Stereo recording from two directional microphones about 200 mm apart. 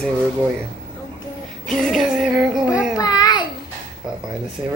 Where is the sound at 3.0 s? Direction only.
20° left (ahead or behind).